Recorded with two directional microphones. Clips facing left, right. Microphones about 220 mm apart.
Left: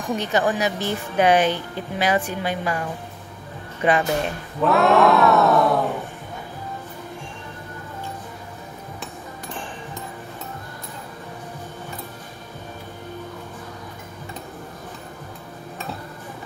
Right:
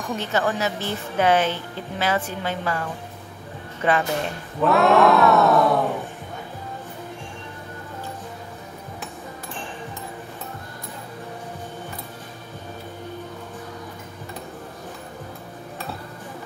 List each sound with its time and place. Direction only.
0.2 s a woman's voice: 15° left (ahead or behind)
4.6 s speech: centre (ahead or behind)